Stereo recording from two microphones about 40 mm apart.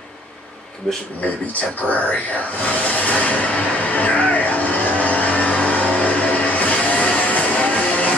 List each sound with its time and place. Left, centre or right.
0.8 s speech: left
1.5 s speech: left
2.9 s music: left